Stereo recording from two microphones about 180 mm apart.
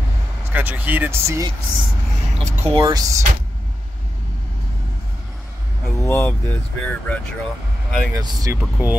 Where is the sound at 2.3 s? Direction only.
35° right (ahead or behind); by 3.3 s 20° right (ahead or behind).